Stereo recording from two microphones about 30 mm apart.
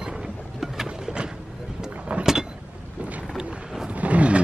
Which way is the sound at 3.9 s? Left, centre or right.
Right.